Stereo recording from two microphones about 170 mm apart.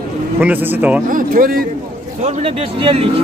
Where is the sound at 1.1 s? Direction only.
55° right (ahead or behind).